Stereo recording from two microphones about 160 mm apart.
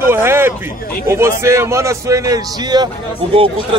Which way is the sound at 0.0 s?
15° right (ahead or behind).